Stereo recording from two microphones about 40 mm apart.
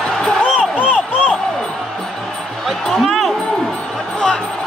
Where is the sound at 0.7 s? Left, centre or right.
Left.